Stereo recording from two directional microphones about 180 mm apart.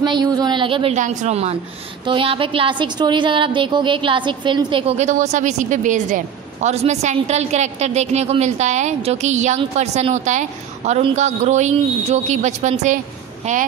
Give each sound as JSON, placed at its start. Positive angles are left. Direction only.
{"t": 0.0, "sound": "a woman's voice", "side_deg": -25}